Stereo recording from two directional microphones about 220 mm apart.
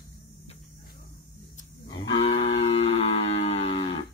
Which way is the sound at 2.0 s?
20° left (ahead or behind).